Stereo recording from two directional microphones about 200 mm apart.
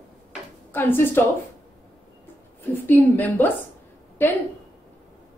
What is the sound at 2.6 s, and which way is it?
Speech, 10° left (ahead or behind).